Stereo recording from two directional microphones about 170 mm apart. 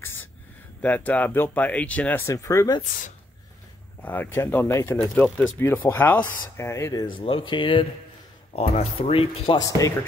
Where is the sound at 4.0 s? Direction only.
10° left (ahead or behind).